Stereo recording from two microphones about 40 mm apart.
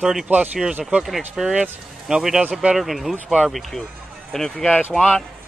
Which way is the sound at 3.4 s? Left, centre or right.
Centre.